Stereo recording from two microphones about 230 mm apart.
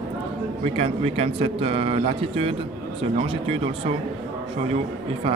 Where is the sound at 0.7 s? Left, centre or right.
Right.